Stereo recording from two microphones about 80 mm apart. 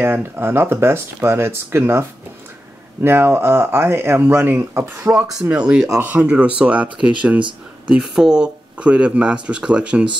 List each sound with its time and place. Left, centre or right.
0.0 s speech: right
5.4 s speech: centre